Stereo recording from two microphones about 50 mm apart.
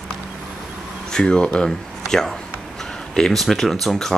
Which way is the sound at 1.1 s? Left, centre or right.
Centre.